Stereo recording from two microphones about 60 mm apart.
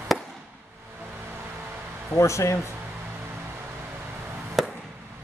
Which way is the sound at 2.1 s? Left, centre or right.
Left.